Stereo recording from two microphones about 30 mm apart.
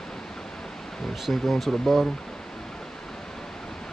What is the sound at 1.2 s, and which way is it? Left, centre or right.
Speech, centre.